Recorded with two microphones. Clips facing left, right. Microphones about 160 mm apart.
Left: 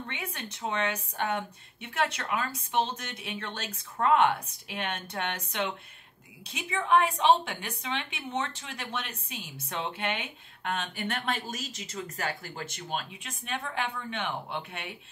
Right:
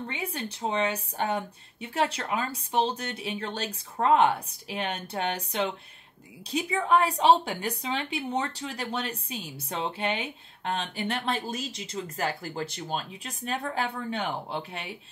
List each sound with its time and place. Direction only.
0.0 s a woman's voice: 30° right (ahead or behind)